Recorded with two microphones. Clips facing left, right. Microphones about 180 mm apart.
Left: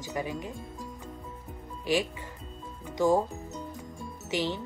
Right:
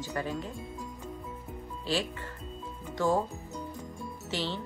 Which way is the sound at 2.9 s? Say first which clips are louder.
Left 3 dB; 15° left (ahead or behind).